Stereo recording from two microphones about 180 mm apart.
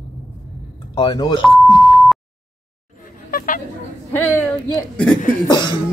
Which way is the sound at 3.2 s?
50° left (ahead or behind).